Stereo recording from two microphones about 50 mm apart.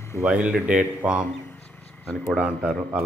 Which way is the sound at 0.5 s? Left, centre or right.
Right.